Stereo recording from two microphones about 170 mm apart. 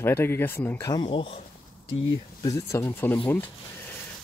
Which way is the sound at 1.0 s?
35° left (ahead or behind).